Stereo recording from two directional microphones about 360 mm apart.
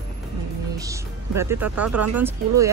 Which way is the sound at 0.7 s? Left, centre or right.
Centre.